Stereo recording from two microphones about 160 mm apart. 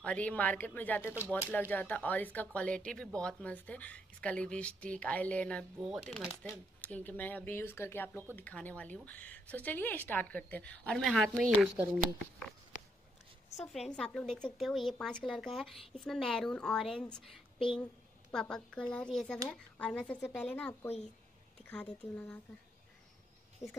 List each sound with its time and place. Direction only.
0.0 s speech: 10° left (ahead or behind)
5.9 s a woman's voice: 5° right (ahead or behind)
6.8 s speech: 10° left (ahead or behind)
13.6 s a woman's voice: 5° left (ahead or behind)
23.6 s speech: 20° left (ahead or behind)